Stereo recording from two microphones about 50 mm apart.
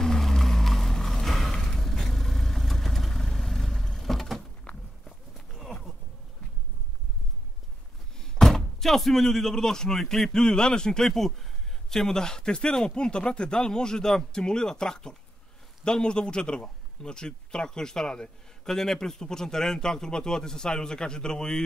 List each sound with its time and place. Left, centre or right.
0.0 s a sound: centre
4.7 s walk: left
8.2 s a man's voice: centre